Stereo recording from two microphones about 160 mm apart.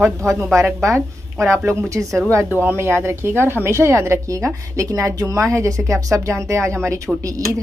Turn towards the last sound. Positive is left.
turn(degrees=-20)  # may be behind; listen again after turning